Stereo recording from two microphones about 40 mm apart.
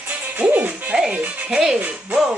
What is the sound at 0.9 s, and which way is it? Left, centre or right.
Speech, right.